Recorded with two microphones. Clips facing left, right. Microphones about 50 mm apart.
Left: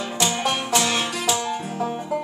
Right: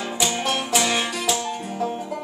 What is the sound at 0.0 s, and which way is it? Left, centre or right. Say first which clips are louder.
Music: left 1 dB; centre.